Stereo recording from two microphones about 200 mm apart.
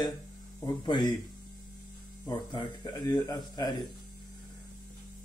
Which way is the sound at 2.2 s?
20° left (ahead or behind).